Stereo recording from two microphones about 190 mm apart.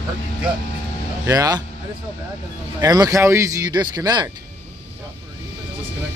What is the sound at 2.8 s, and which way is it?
Speech, 20° right (ahead or behind).